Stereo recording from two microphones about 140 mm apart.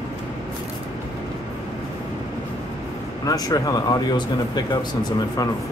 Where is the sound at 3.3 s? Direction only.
25° left (ahead or behind).